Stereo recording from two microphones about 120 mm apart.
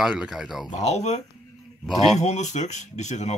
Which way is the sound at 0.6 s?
70° left (ahead or behind).